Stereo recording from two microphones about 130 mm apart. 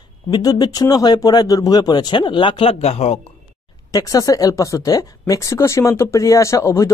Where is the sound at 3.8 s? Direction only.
30° left (ahead or behind).